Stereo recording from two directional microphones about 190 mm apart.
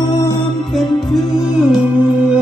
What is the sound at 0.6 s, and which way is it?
Music, centre (ahead or behind).